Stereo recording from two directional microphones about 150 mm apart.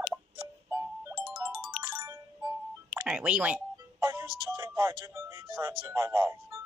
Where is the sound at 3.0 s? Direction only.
5° right (ahead or behind).